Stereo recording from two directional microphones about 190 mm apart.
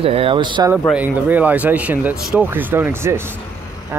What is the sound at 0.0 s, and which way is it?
Speech, 30° right (ahead or behind).